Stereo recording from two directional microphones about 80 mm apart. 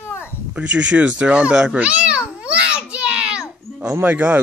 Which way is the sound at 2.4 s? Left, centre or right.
Centre.